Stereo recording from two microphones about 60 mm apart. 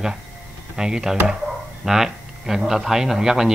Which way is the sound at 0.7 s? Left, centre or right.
Centre.